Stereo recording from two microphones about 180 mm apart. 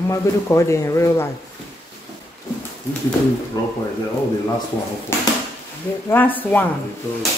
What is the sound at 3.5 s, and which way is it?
Speech, 20° left (ahead or behind).